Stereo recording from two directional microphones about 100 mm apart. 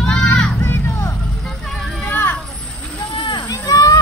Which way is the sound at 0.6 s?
25° left (ahead or behind).